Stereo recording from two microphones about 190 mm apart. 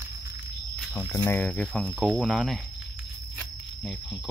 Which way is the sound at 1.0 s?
20° left (ahead or behind).